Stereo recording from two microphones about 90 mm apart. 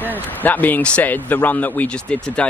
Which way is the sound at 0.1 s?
20° left (ahead or behind).